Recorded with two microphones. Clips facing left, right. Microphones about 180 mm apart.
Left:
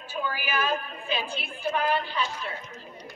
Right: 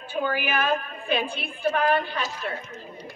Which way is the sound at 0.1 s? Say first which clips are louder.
Right 5 dB; 55° right (ahead or behind).